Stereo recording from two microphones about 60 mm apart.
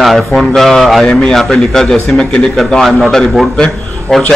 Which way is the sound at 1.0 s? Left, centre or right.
Centre.